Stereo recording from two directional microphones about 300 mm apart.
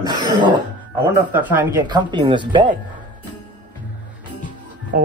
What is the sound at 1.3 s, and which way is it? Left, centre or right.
Speech, centre.